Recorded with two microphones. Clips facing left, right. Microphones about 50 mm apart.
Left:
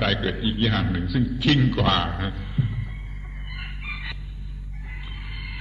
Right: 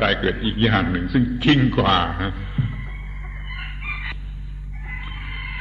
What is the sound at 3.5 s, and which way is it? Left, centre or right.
Chicken, right.